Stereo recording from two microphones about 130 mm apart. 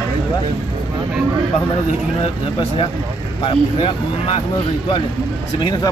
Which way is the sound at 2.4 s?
40° left (ahead or behind).